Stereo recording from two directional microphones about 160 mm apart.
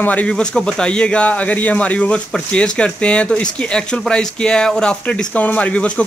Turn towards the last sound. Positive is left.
turn(degrees=10)  # may be behind; listen again after turning